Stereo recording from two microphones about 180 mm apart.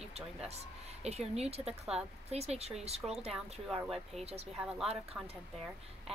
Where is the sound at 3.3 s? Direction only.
Centre (ahead or behind).